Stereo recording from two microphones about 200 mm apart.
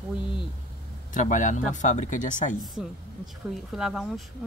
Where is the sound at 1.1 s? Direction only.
40° left (ahead or behind).